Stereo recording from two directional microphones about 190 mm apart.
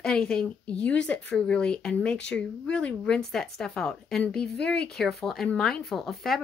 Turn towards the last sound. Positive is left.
turn(degrees=0)  # may be behind; listen again after turning